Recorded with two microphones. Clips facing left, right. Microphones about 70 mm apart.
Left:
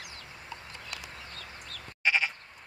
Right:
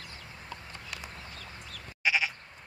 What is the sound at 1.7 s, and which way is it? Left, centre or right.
Sheep, centre.